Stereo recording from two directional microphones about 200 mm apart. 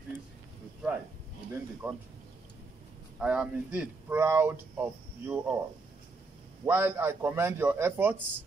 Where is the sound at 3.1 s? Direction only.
5° right (ahead or behind).